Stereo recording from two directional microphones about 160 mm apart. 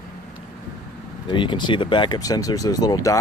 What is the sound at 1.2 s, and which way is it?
Speech, 30° left (ahead or behind).